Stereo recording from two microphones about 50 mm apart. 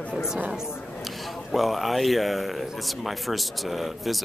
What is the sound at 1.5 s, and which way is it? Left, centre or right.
Speech, centre.